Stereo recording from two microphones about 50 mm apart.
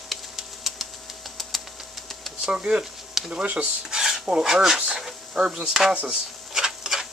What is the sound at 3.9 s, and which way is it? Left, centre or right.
Cutlery, centre.